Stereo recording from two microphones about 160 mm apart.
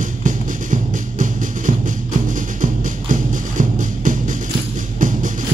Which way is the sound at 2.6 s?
55° right (ahead or behind).